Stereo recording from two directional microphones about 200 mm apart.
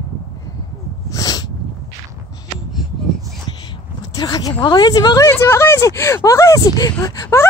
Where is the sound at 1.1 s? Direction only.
20° left (ahead or behind).